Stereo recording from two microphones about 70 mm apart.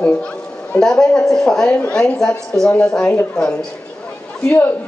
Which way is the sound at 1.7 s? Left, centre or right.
Centre.